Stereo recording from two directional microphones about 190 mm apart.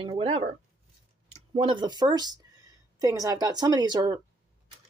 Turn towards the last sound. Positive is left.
turn(degrees=-20)  # may be behind; listen again after turning